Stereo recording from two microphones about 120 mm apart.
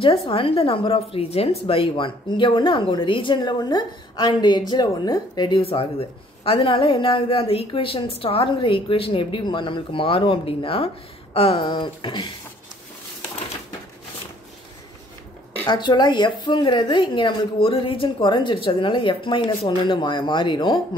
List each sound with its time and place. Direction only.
0.0 s a woman's voice: 45° left (ahead or behind)
5.6 s a woman's voice: 55° left (ahead or behind)
15.6 s a woman's voice: 40° left (ahead or behind)